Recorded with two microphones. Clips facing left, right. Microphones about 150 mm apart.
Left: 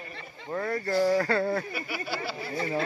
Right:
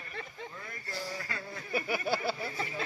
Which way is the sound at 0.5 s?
70° left (ahead or behind).